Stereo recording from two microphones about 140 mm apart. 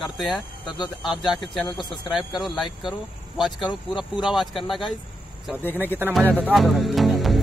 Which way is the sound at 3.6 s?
30° left (ahead or behind).